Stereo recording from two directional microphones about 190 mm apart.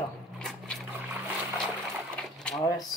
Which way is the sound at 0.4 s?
Centre (ahead or behind).